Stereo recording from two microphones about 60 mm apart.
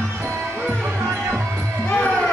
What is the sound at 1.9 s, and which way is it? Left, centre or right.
Music, left.